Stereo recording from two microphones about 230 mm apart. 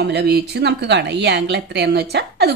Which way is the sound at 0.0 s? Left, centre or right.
Right.